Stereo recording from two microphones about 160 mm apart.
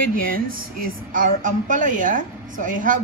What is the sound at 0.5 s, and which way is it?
A woman's voice, 60° right (ahead or behind).